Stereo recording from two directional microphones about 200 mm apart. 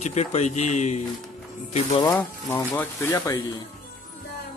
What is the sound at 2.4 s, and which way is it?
Speech, 15° left (ahead or behind).